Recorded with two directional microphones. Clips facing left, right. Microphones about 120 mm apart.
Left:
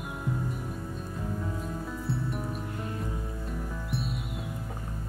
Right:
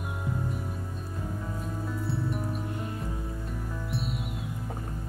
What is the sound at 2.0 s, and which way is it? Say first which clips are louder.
Music: right 1 dB; centre (ahead or behind).